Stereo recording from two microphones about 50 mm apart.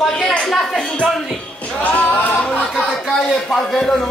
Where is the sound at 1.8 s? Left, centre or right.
Left.